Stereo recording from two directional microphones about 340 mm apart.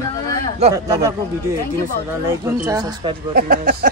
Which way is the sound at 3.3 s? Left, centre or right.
Right.